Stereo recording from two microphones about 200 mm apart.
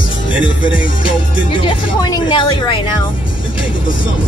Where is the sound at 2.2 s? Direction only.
25° left (ahead or behind).